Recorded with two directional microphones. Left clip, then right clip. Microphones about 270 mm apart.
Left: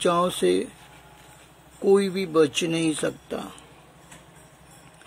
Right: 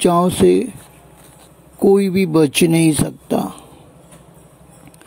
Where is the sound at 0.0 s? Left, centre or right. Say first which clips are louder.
Right 8 dB; right.